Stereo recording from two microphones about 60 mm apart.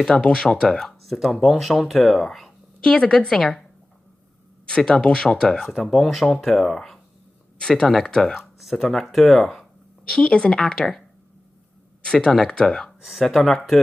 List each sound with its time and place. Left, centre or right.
0.1 s speech: centre
4.6 s speech: centre
5.9 s speech: centre
10.0 s speech: centre
13.0 s speech: centre